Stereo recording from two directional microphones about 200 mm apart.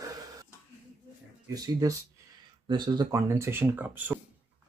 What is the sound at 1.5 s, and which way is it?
Speech, 15° right (ahead or behind).